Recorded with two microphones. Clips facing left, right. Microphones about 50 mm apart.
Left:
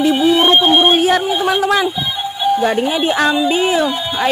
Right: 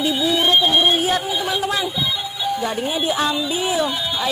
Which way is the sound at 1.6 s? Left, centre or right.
Left.